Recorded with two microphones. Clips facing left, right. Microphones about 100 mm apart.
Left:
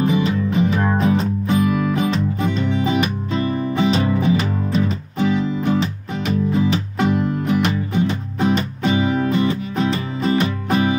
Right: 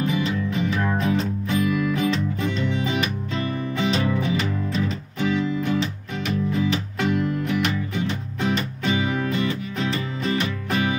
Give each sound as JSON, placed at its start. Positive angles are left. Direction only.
{"t": 0.0, "sound": "music", "side_deg": 25}
{"t": 0.9, "sound": "music", "side_deg": 20}
{"t": 1.6, "sound": "music", "side_deg": 35}
{"t": 2.1, "sound": "music", "side_deg": 20}
{"t": 8.5, "sound": "music", "side_deg": 20}
{"t": 8.9, "sound": "music", "side_deg": 30}